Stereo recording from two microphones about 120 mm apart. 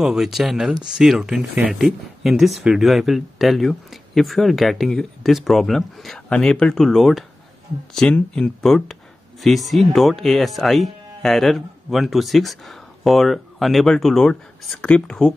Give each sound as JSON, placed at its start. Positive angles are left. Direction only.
{"t": 0.0, "sound": "speech", "side_deg": -5}